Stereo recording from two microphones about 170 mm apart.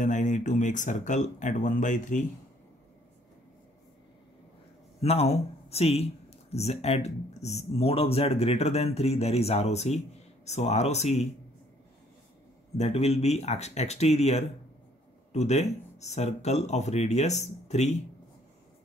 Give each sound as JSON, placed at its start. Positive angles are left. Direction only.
{"t": 0.0, "sound": "speech", "side_deg": 45}
{"t": 5.0, "sound": "speech", "side_deg": 35}
{"t": 12.7, "sound": "speech", "side_deg": 40}